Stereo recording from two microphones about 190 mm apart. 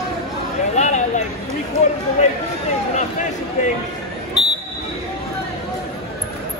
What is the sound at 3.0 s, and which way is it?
Speech, 40° left (ahead or behind).